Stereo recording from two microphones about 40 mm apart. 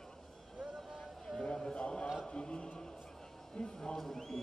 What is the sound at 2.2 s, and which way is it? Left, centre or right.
Chant, left.